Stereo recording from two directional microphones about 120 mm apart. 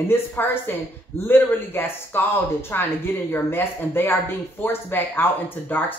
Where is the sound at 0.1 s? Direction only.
20° left (ahead or behind).